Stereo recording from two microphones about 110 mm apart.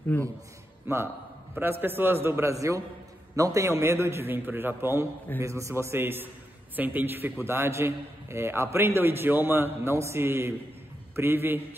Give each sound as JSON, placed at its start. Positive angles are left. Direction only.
{"t": 0.1, "sound": "a man's voice", "side_deg": 15}
{"t": 0.8, "sound": "a man's voice", "side_deg": -20}